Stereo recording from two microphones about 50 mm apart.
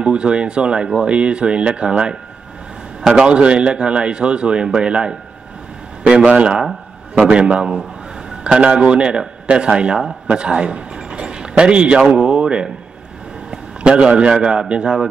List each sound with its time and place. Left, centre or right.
0.0 s a man's voice: centre
3.3 s a man's voice: right